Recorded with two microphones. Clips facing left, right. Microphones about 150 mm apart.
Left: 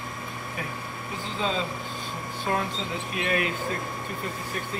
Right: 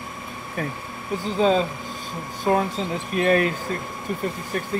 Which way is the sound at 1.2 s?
40° right (ahead or behind).